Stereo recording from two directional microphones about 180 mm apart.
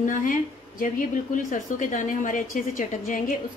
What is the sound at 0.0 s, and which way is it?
A woman's voice, 50° left (ahead or behind).